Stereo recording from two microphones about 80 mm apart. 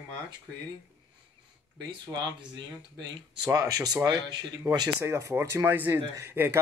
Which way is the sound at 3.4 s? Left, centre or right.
Right.